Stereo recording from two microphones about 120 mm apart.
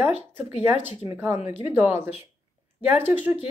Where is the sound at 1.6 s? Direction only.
15° right (ahead or behind).